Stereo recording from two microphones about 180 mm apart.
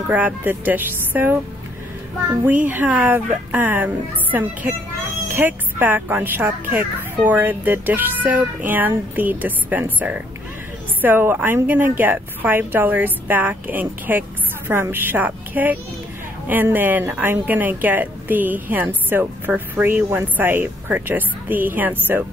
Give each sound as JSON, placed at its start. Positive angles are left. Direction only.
{"t": 0.1, "sound": "speech", "side_deg": -10}
{"t": 2.4, "sound": "speech", "side_deg": -10}